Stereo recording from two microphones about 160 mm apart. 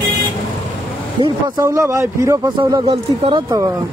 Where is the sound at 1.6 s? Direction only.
20° right (ahead or behind).